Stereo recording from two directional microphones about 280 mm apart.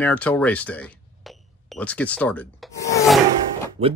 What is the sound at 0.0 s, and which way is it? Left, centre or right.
Speech, centre.